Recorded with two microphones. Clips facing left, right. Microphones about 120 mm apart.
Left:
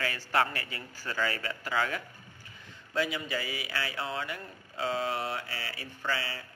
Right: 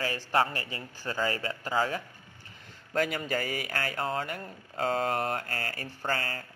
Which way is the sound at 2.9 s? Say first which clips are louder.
Right 3 dB; 45° right (ahead or behind).